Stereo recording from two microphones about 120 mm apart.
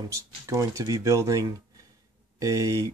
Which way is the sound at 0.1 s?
25° right (ahead or behind).